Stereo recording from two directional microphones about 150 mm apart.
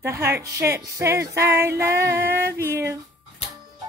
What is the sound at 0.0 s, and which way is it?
Music, 15° right (ahead or behind).